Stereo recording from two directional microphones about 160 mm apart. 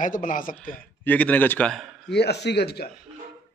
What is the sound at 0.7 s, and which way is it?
Speech, 10° left (ahead or behind).